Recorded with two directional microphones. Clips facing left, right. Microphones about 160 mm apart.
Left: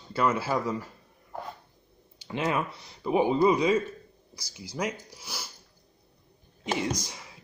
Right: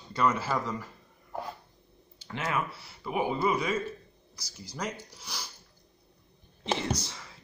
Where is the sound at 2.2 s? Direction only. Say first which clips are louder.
Left 4 dB; 20° left (ahead or behind).